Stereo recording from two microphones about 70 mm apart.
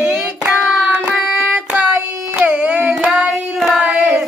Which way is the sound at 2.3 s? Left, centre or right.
Centre.